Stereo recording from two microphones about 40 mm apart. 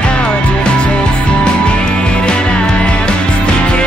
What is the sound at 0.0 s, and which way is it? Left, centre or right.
Music, left.